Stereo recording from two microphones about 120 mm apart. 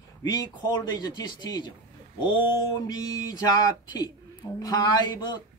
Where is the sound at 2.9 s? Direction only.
30° left (ahead or behind).